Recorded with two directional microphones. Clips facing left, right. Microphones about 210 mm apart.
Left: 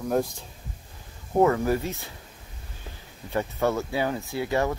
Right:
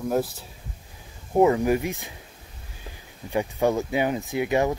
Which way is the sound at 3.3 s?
15° right (ahead or behind).